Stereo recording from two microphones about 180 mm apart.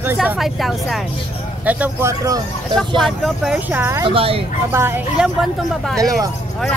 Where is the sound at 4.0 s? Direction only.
30° right (ahead or behind).